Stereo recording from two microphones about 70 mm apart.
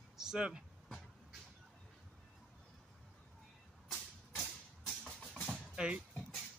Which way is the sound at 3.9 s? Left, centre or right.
Centre.